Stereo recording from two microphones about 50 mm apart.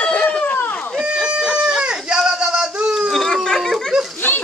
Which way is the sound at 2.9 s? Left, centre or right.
Centre.